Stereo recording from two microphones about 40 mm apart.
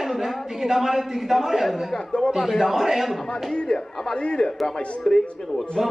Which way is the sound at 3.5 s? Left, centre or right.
Left.